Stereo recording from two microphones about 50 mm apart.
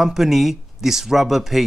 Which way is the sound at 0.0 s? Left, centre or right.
Centre.